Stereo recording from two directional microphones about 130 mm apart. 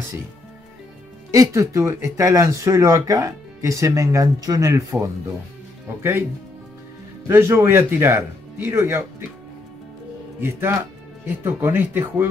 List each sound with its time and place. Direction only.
1.3 s speech: 25° right (ahead or behind)
7.2 s speech: 20° right (ahead or behind)
10.4 s speech: 15° right (ahead or behind)